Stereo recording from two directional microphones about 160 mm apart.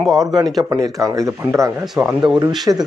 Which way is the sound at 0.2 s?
25° right (ahead or behind).